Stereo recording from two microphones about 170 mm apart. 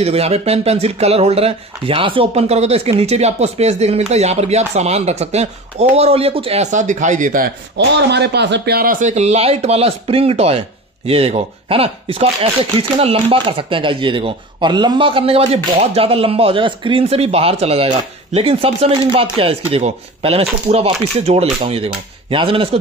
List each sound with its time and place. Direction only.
0.0 s speech: 35° right (ahead or behind); by 7.5 s 55° right (ahead or behind)
7.7 s speech: 85° right; by 8.9 s 70° right (ahead or behind)
9.0 s speech: 40° right (ahead or behind)